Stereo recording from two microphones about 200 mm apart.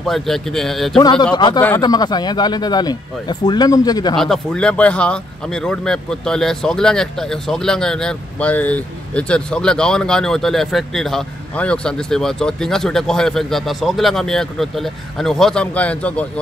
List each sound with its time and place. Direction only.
0.0 s speech: centre (ahead or behind)
1.3 s speech: 20° left (ahead or behind)
4.2 s speech: 5° left (ahead or behind)